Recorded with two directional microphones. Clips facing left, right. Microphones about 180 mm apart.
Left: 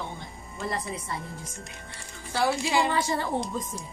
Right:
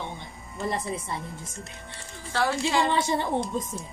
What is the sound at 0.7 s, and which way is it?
Speech, 25° right (ahead or behind).